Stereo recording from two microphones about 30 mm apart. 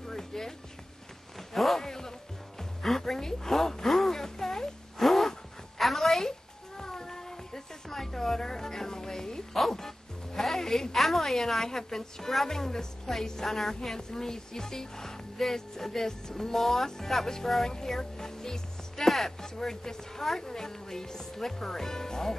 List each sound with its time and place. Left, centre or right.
0.0 s music: centre
1.5 s zipper: centre
1.8 s zipper: centre
2.8 s a sound: centre
6.8 s music: centre
7.9 s a sound: centre
9.5 s music: centre
12.4 s speech: centre
16.5 s a woman's voice: centre